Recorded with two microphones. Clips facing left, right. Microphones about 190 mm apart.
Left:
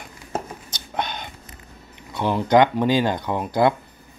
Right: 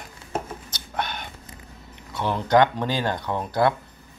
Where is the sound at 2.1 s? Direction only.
15° left (ahead or behind).